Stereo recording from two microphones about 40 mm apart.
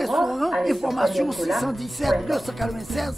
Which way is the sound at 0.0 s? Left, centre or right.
Centre.